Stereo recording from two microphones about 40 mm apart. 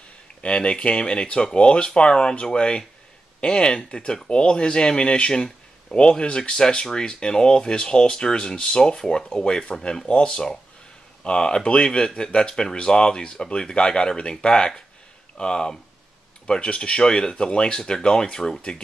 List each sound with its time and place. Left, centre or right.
0.4 s speech: left